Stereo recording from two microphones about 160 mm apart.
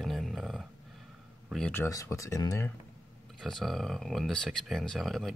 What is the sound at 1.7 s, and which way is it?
Speech, 15° left (ahead or behind).